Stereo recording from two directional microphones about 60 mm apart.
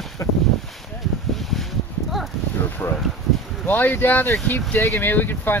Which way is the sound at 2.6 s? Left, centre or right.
Left.